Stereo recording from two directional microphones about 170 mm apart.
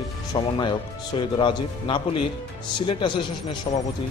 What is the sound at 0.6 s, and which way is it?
Speech, 25° left (ahead or behind).